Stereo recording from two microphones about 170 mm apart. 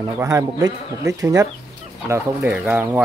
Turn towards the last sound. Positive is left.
turn(degrees=-10)  # may be behind; listen again after turning